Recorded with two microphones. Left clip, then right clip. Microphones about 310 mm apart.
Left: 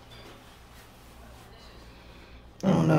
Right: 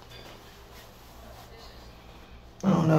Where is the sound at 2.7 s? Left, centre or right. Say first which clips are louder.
Even; centre.